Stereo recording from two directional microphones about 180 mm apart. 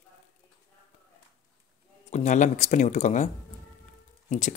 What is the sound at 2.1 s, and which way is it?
Speech, 40° left (ahead or behind).